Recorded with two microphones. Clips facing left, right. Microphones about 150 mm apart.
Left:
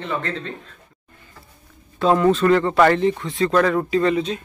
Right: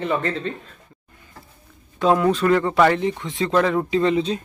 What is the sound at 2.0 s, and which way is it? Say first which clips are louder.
Speech: left 1 dB; 10° right (ahead or behind).